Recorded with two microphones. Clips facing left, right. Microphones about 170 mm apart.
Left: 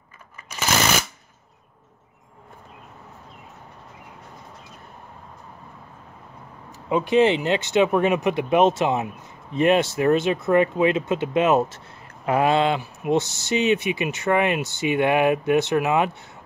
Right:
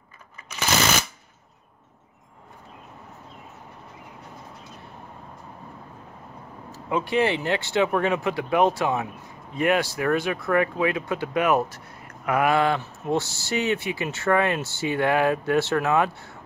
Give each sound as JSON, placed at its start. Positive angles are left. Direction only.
{"t": 6.7, "sound": "speech", "side_deg": 20}